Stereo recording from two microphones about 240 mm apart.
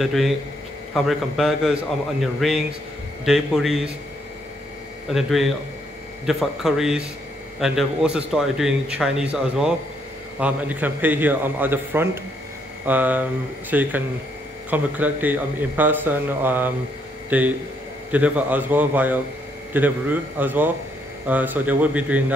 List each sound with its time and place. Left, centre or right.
0.0 s a man's voice: centre
5.0 s a man's voice: centre